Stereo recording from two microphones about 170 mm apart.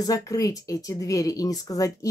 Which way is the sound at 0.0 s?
20° left (ahead or behind).